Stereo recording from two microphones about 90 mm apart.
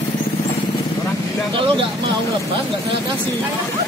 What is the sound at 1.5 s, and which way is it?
Speech, 70° right (ahead or behind).